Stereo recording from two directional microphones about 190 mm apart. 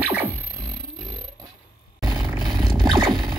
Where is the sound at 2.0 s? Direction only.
20° right (ahead or behind).